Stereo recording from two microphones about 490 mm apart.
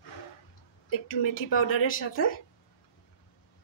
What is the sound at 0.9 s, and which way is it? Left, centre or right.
A woman's voice, left.